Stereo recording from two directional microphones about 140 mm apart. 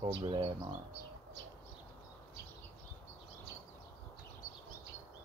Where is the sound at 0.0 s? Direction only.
35° right (ahead or behind).